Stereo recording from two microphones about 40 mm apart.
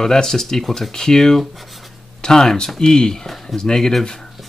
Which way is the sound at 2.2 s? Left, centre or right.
Centre.